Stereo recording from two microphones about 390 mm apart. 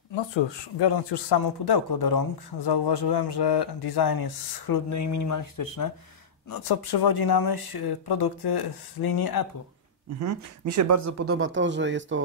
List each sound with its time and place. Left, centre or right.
0.1 s speech: left
2.6 s speech: left
6.5 s speech: left
10.2 s speech: right